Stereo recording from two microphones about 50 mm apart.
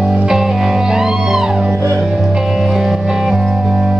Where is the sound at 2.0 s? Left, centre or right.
Centre.